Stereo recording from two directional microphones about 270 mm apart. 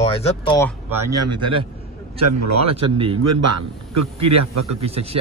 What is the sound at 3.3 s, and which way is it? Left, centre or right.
A man's voice, right.